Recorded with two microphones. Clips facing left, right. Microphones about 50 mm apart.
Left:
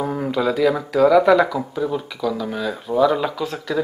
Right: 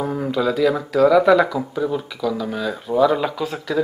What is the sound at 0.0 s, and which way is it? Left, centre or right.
Speech, centre.